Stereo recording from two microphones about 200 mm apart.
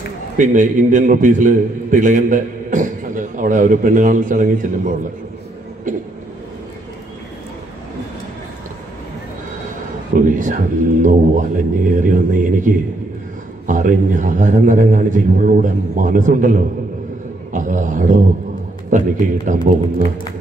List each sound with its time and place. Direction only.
0.4 s a man's voice: 40° right (ahead or behind)
10.1 s a man's voice: 40° right (ahead or behind)
17.5 s a sound: 40° right (ahead or behind)
18.9 s a man's voice: 40° right (ahead or behind)